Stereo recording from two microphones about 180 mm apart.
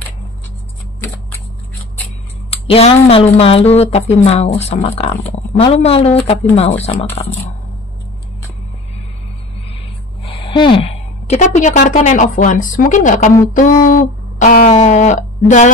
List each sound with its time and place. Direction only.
2.5 s speech: 35° left (ahead or behind)
10.2 s a woman's voice: 30° left (ahead or behind); by 13.3 s 45° left (ahead or behind)
13.5 s a sound: 45° left (ahead or behind)
14.4 s speech: 45° left (ahead or behind)